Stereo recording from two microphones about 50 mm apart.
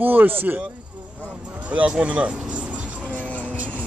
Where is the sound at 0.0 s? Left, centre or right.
Right.